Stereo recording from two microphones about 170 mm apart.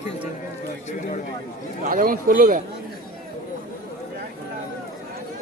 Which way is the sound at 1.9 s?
55° right (ahead or behind).